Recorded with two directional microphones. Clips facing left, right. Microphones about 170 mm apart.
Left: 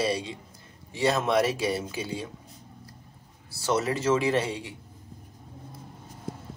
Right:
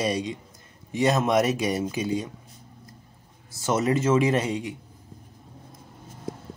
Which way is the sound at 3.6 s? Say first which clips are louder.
Right 3 dB; 20° right (ahead or behind).